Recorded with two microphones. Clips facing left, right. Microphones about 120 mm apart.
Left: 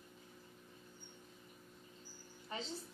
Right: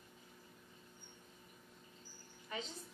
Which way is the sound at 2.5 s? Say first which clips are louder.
Even; 30° left (ahead or behind).